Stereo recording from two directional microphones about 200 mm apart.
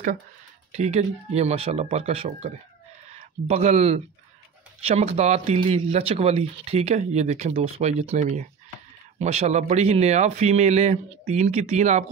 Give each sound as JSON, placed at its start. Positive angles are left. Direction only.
{"t": 0.7, "sound": "speech", "side_deg": -35}